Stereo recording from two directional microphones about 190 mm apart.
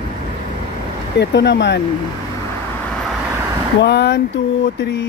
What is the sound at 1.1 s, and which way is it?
Speech, 60° left (ahead or behind).